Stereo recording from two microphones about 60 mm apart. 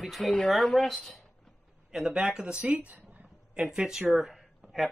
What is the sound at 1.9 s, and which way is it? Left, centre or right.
Speech, centre.